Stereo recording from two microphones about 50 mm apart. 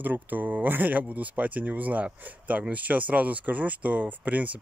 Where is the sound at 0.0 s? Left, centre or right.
Right.